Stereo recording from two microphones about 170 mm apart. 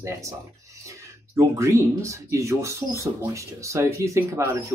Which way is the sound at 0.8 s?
20° right (ahead or behind).